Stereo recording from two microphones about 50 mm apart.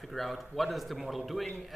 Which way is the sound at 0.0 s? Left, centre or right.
Centre.